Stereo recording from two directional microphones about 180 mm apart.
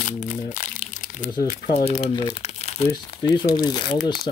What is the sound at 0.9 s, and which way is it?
Crumpling, 45° left (ahead or behind).